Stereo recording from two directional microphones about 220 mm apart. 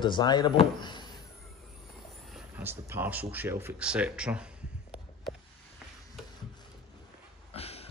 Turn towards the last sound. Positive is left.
turn(degrees=25)  # may be behind; listen again after turning